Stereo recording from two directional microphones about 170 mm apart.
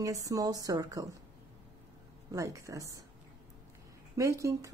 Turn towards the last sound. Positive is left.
turn(degrees=-20)  # may be behind; listen again after turning